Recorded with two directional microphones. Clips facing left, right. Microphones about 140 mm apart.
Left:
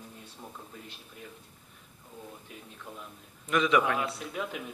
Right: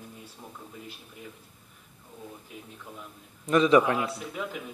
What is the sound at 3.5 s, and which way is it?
Speech, 35° right (ahead or behind).